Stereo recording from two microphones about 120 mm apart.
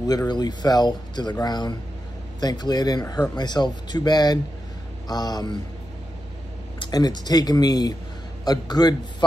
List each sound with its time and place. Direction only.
0.3 s a man's voice: 35° left (ahead or behind)
6.8 s a man's voice: 35° left (ahead or behind)